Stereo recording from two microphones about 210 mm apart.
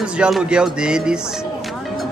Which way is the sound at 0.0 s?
5° right (ahead or behind).